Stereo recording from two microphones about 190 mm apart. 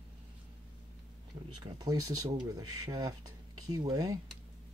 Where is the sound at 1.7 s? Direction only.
20° right (ahead or behind).